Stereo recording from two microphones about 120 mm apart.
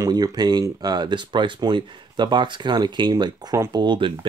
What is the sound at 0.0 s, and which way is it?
Speech, 35° right (ahead or behind).